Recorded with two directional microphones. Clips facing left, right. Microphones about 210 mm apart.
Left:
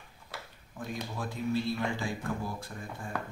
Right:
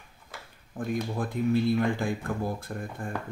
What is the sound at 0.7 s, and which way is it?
Speech, 55° right (ahead or behind).